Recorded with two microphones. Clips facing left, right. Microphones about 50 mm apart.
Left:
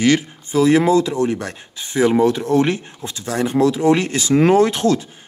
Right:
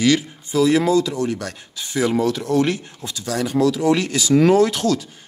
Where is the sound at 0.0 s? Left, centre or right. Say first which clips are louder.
Left 2 dB; left.